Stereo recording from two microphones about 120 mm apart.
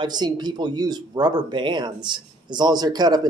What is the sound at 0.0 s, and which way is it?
Speech, 35° right (ahead or behind).